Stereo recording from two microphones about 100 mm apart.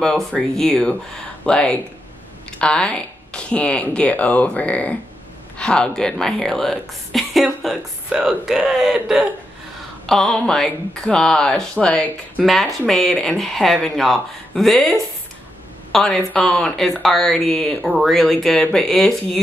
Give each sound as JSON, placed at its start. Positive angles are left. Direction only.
{"t": 0.4, "sound": "speech", "side_deg": 10}